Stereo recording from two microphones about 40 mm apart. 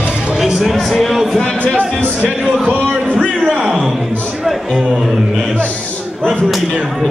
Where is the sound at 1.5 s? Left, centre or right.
Left.